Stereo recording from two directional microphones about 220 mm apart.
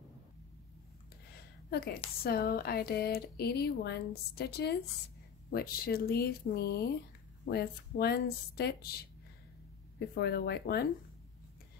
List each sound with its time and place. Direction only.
1.7 s a woman's voice: 45° left (ahead or behind)
9.9 s speech: 45° left (ahead or behind)